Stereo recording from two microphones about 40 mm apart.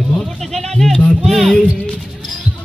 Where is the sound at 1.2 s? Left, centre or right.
Centre.